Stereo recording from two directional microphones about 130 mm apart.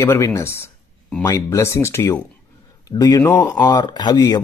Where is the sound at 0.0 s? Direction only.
20° left (ahead or behind).